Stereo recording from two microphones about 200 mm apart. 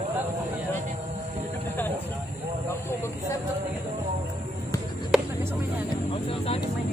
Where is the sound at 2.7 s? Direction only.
15° left (ahead or behind).